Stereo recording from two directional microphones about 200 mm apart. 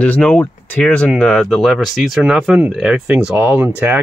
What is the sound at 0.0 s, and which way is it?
Speech, 5° left (ahead or behind).